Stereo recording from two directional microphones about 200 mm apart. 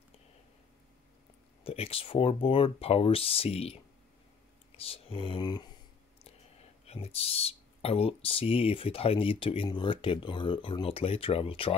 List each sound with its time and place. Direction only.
1.6 s speech: 30° left (ahead or behind)
6.9 s speech: 30° left (ahead or behind)